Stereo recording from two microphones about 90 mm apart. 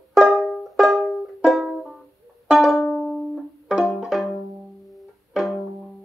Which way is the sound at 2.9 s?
15° left (ahead or behind).